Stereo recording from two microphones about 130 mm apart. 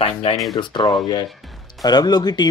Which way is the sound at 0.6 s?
35° left (ahead or behind).